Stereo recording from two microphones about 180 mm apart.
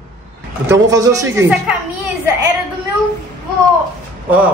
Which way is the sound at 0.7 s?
20° right (ahead or behind).